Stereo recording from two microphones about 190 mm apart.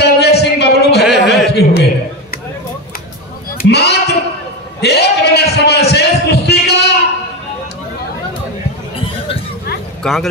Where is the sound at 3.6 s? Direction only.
60° left (ahead or behind).